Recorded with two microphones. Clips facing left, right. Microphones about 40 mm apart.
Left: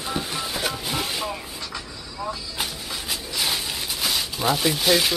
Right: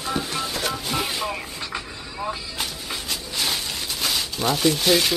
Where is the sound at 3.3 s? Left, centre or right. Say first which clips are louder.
Even; centre.